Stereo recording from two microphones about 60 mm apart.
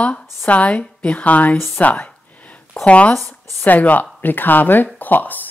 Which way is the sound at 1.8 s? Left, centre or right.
Left.